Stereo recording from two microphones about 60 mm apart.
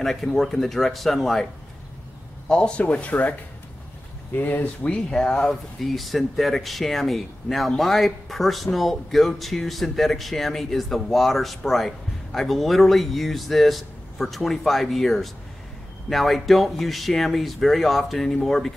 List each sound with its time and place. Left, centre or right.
0.0 s a man's voice: centre
2.8 s speech: left
4.4 s speech: left
4.8 s speech: centre